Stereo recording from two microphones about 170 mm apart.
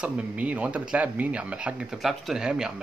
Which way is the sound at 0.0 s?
10° right (ahead or behind).